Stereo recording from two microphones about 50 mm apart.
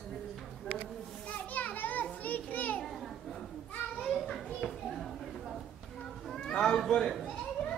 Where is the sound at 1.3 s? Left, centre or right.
Left.